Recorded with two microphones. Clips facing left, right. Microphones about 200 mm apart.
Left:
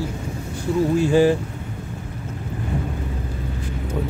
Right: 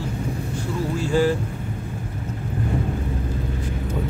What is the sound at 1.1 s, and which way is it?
Speech, 15° left (ahead or behind).